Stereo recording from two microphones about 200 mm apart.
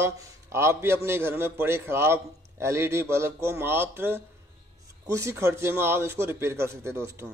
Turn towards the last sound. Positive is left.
turn(degrees=-15)  # may be behind; listen again after turning